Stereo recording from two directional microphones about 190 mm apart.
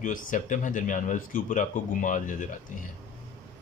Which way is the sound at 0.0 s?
45° left (ahead or behind).